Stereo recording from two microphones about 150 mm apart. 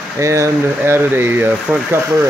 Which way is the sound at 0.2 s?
20° right (ahead or behind).